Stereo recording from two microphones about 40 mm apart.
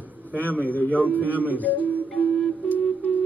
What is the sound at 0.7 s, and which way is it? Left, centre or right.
Speech, left.